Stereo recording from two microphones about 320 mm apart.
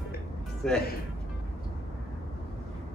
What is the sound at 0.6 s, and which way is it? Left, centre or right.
Speech, centre.